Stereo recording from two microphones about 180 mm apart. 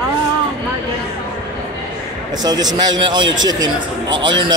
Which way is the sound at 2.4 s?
20° right (ahead or behind).